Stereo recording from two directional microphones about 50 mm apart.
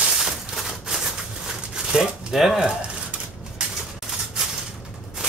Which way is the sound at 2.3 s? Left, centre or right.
Centre.